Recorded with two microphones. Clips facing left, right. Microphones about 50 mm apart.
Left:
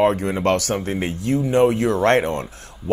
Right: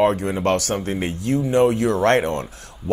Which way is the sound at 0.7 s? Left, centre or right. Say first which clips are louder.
Even; centre.